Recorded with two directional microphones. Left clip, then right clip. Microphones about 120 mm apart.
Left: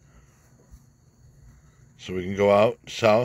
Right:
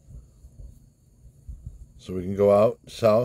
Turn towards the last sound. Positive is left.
turn(degrees=-25)  # may be behind; listen again after turning